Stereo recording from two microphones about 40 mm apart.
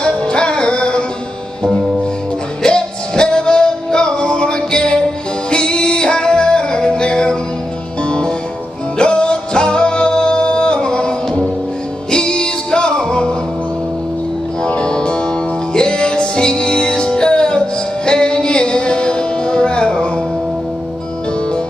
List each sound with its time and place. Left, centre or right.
0.0 s music: left
2.6 s music: left
14.7 s music: left